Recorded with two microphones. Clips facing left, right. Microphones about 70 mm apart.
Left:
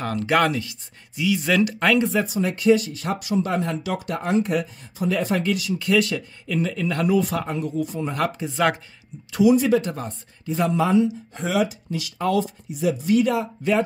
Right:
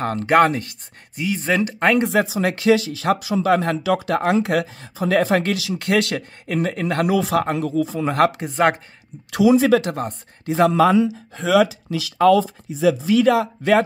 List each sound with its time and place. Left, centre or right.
0.0 s speech: right
2.0 s speech: right
6.4 s speech: right
9.3 s speech: right
9.9 s speech: right
10.5 s speech: right